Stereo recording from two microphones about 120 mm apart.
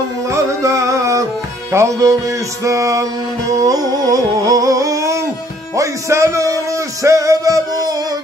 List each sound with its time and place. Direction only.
0.6 s music: 25° right (ahead or behind)
3.5 s a sound: 30° right (ahead or behind)
5.8 s music: 25° right (ahead or behind)